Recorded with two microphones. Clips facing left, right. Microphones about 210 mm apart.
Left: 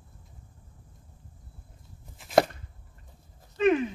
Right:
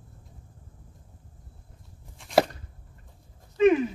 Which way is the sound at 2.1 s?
Centre (ahead or behind).